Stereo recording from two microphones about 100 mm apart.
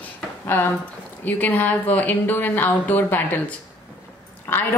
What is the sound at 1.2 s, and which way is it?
Speech, 15° left (ahead or behind).